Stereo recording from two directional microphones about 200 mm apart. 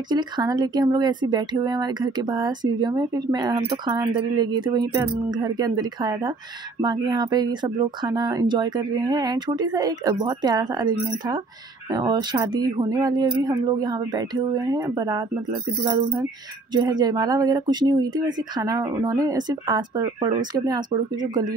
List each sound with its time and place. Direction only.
0.1 s speech: 20° right (ahead or behind)
11.9 s speech: 20° right (ahead or behind)